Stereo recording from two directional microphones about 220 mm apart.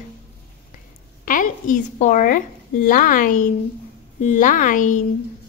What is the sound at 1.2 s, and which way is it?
A woman's voice, 35° left (ahead or behind).